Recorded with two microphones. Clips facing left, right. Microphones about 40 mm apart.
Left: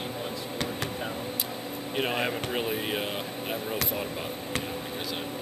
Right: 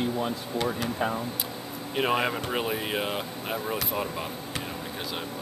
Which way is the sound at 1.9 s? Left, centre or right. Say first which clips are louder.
Right 3 dB; centre.